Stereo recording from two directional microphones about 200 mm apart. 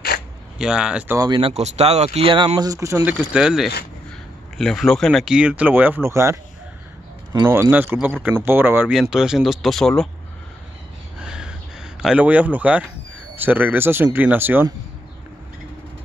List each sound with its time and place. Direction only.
0.6 s speech: 5° right (ahead or behind); by 1.5 s 20° right (ahead or behind)
1.5 s speech: 35° right (ahead or behind); by 10.0 s centre (ahead or behind)
11.1 s a sound: 5° right (ahead or behind)
12.0 s speech: 5° right (ahead or behind)